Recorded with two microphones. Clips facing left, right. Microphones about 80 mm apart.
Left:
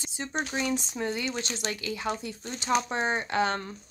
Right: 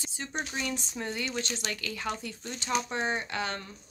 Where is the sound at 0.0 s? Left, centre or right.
Left.